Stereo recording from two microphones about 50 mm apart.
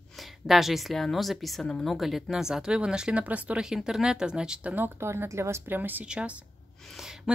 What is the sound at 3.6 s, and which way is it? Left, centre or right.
Speech, centre.